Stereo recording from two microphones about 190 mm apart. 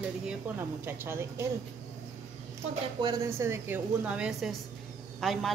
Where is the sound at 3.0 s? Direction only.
15° right (ahead or behind).